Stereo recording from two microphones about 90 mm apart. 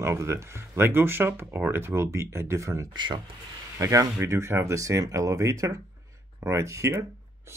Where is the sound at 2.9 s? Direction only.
55° right (ahead or behind).